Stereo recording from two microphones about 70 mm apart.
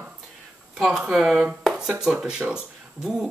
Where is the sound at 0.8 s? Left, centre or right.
Centre.